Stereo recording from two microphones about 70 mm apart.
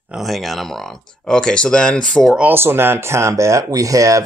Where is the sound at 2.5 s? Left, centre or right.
Right.